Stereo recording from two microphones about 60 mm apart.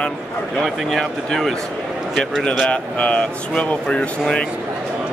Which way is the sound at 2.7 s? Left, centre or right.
Left.